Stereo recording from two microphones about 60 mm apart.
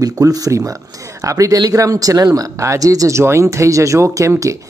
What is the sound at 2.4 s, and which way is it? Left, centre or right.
Speech, right.